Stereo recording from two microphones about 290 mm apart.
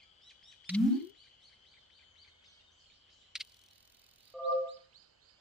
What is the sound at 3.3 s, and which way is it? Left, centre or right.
Cricket, centre.